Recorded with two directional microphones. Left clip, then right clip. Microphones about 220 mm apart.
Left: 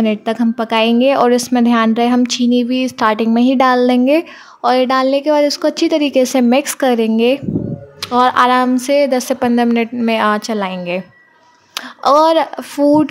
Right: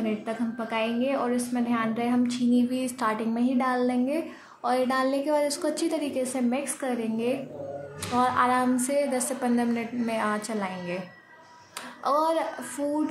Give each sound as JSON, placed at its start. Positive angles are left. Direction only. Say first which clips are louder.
{"t": 0.0, "sound": "a woman's voice", "louder": "left 14 dB", "side_deg": 50}